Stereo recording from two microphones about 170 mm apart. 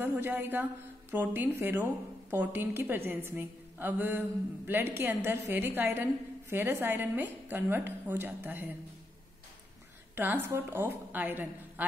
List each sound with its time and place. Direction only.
0.0 s a woman's voice: 10° right (ahead or behind)
10.1 s a woman's voice: 10° right (ahead or behind)